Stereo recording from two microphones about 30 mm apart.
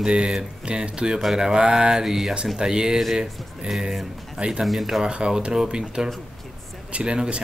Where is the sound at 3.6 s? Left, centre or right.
Centre.